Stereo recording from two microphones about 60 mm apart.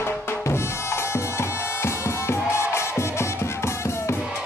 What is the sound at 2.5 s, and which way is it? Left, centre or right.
Music, left.